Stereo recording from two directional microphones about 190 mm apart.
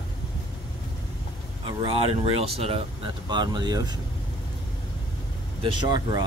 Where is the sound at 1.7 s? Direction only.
25° right (ahead or behind).